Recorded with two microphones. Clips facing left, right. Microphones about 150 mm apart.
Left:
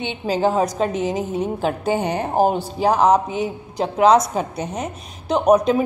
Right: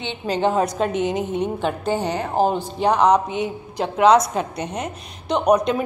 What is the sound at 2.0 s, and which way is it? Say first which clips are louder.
Speech: left 2 dB; 50° left (ahead or behind).